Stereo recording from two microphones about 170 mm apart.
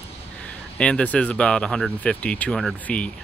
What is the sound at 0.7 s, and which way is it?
Speech, 5° left (ahead or behind).